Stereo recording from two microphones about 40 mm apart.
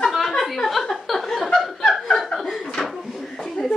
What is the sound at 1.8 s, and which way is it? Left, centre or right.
Snicker, centre.